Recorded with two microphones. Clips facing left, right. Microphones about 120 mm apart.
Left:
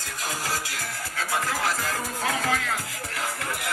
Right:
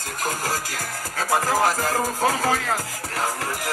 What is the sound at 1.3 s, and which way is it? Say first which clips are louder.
Music: right 7 dB; 40° right (ahead or behind).